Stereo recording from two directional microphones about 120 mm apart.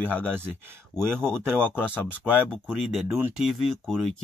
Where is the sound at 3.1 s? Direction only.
20° right (ahead or behind).